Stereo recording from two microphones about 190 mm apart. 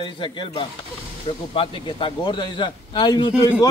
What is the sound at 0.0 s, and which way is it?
A man's voice, 25° left (ahead or behind).